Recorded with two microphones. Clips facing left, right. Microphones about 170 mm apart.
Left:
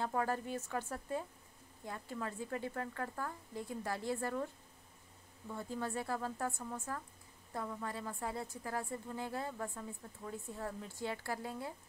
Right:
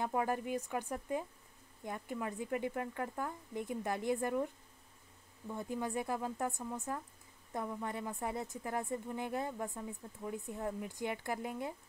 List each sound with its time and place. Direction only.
0.0 s speech: 15° right (ahead or behind)
5.5 s a woman's voice: 15° right (ahead or behind)